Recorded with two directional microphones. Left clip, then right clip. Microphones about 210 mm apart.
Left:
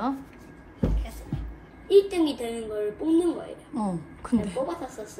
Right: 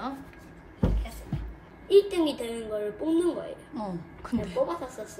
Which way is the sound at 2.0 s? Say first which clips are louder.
Left 2 dB; 30° left (ahead or behind).